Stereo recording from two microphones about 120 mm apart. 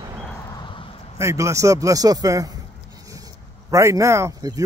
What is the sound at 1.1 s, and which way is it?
A man's voice, 25° right (ahead or behind).